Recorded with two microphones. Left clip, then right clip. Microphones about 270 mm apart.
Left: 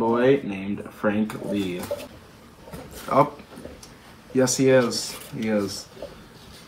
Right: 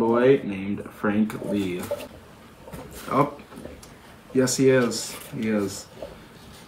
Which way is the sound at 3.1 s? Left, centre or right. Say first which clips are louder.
Left 3 dB; centre.